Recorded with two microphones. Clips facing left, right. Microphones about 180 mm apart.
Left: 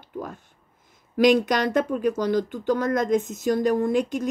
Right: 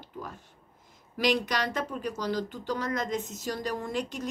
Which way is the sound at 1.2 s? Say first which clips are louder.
Left 9 dB; 50° left (ahead or behind).